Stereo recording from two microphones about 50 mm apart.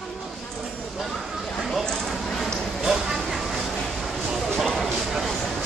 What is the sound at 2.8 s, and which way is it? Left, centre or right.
Vehicle, centre.